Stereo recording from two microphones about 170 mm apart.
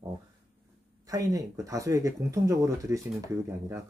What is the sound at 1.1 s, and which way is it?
Speech, 20° right (ahead or behind).